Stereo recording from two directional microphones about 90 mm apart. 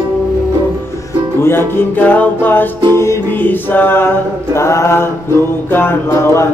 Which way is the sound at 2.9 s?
30° left (ahead or behind).